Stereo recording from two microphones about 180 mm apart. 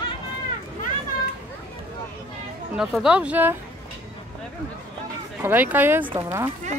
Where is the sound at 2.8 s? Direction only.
Centre (ahead or behind).